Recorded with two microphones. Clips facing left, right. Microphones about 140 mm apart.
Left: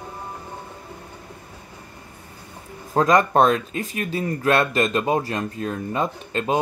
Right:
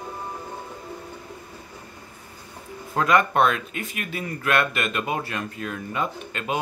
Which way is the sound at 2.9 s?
35° left (ahead or behind).